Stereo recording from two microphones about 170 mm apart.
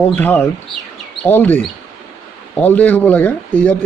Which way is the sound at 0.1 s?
10° left (ahead or behind).